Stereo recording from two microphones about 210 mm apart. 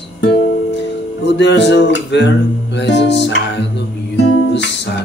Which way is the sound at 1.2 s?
55° left (ahead or behind).